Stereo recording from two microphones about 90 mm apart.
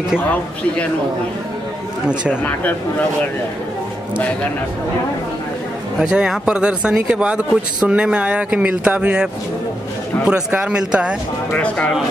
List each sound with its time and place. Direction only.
0.2 s speech: 15° left (ahead or behind)
5.9 s speech: 10° right (ahead or behind)
11.5 s speech: 15° left (ahead or behind)